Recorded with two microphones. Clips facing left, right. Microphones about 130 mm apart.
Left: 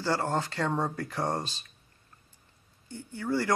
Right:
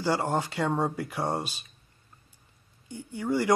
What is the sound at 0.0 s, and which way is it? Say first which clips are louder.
Speech: right 2 dB; 15° right (ahead or behind).